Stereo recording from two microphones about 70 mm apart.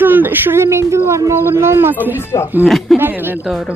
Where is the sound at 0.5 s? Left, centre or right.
Right.